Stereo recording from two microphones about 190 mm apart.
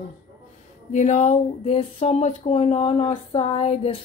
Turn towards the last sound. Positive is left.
turn(degrees=35)  # may be behind; listen again after turning